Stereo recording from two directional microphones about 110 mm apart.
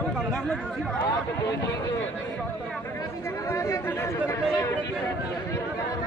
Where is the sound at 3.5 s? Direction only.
30° left (ahead or behind).